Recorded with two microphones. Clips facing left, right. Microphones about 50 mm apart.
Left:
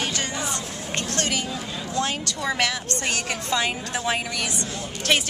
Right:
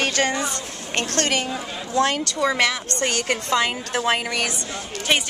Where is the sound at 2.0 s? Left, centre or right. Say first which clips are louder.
Right 6 dB; right.